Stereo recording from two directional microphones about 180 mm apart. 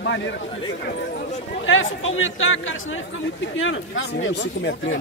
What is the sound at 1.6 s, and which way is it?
A man's voice, 90° left.